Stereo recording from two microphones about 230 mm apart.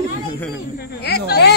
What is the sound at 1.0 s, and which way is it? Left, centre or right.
Speech, left.